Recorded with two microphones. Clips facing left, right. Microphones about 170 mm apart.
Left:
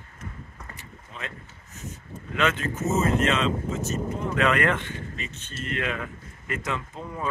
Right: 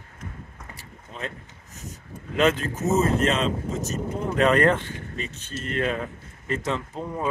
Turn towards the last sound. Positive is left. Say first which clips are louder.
# right 4 dB
turn(degrees=-30)  # may be behind; listen again after turning